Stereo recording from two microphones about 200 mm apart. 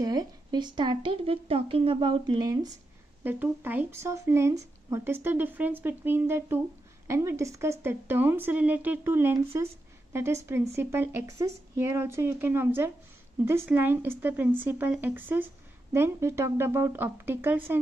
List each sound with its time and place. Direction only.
0.0 s a woman's voice: 20° right (ahead or behind)